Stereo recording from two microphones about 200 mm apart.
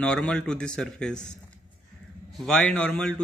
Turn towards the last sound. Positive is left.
turn(degrees=5)  # may be behind; listen again after turning